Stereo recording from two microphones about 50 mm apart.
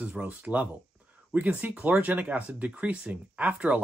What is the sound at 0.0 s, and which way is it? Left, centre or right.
Speech, right.